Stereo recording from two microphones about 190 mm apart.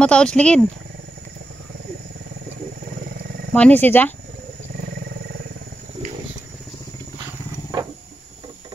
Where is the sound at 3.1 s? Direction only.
55° right (ahead or behind).